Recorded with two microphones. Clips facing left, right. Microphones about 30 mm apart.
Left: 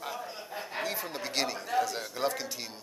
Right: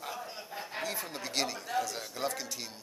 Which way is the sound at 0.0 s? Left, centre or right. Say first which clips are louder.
Left 2 dB; centre.